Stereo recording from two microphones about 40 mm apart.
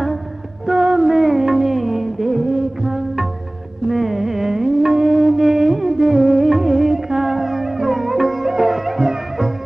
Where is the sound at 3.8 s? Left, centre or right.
Centre.